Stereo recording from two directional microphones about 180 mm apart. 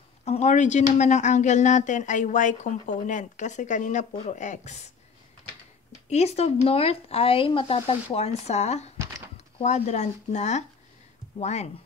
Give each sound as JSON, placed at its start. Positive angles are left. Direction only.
{"t": 0.2, "sound": "speech", "side_deg": 40}
{"t": 6.0, "sound": "speech", "side_deg": 35}